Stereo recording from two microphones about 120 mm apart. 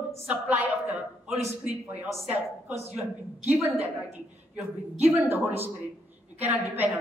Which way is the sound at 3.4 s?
15° right (ahead or behind).